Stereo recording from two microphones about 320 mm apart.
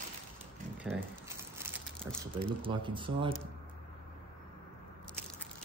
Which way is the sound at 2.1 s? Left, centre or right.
Centre.